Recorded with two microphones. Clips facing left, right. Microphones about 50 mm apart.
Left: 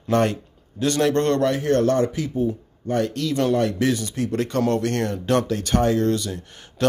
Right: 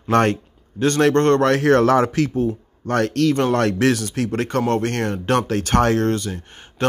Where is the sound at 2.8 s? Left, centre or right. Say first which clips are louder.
Right 5 dB; right.